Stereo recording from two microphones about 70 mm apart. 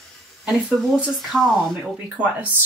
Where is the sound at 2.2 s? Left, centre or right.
Right.